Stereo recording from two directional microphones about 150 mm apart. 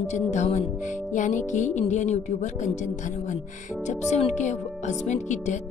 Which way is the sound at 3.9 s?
50° left (ahead or behind).